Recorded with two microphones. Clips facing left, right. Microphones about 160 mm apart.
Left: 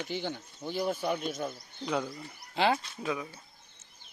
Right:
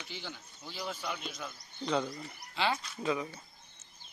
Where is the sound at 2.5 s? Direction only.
50° left (ahead or behind).